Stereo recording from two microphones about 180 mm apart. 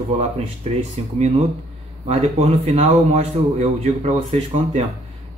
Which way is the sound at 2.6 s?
35° right (ahead or behind).